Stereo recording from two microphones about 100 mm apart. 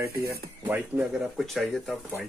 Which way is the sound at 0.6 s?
15° right (ahead or behind).